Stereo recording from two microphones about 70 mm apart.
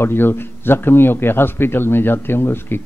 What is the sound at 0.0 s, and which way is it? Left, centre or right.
A man's voice, left.